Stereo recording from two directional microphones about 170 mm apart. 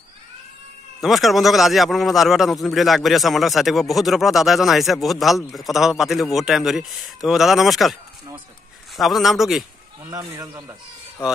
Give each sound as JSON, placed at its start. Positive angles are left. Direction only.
{"t": 1.0, "sound": "a man's voice", "side_deg": 0}
{"t": 10.1, "sound": "speech", "side_deg": -20}